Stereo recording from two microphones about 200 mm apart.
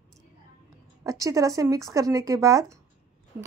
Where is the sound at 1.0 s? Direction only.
15° right (ahead or behind).